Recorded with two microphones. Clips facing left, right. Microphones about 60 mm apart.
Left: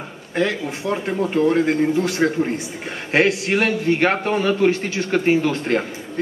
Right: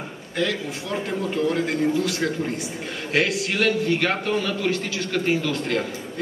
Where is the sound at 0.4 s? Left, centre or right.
Left.